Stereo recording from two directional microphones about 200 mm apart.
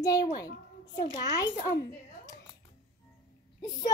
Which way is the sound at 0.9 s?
20° left (ahead or behind).